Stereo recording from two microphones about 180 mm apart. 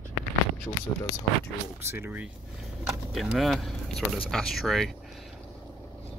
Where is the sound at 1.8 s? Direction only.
15° right (ahead or behind).